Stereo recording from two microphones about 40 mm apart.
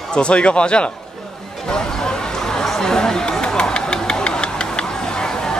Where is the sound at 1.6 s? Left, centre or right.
Centre.